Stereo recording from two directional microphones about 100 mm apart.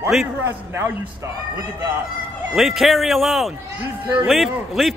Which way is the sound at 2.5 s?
Centre (ahead or behind).